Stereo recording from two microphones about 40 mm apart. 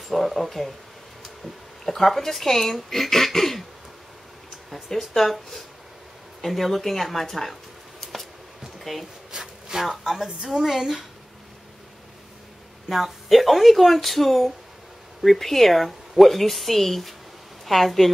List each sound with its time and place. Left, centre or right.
0.1 s a woman's voice: centre
4.8 s a woman's voice: centre
8.0 s a sound: centre
9.3 s a sound: centre
9.8 s a woman's voice: centre
12.9 s a woman's voice: centre